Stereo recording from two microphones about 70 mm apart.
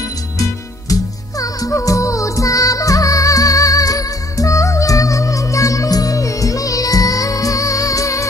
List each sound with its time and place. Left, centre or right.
1.4 s music: left